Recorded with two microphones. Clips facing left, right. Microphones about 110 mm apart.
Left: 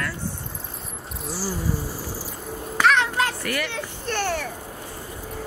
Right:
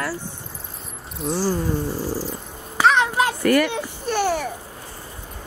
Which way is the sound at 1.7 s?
10° left (ahead or behind).